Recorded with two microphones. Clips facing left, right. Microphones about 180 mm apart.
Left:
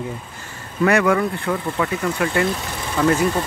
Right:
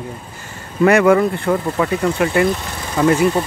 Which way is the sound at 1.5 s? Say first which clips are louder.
Right 7 dB; 40° right (ahead or behind).